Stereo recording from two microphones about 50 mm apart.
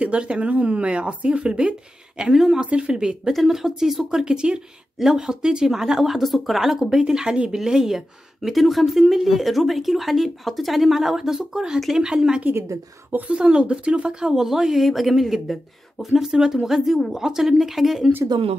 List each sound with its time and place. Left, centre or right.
0.0 s a woman's voice: right
2.3 s speech: centre
2.6 s a woman's voice: centre
3.3 s speech: centre